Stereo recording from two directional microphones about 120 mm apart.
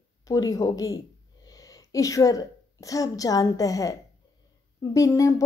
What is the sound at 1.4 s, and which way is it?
A woman's voice, 30° left (ahead or behind).